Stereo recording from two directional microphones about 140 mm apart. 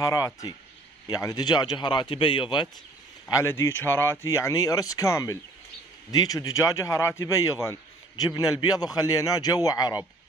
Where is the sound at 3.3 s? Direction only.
20° left (ahead or behind).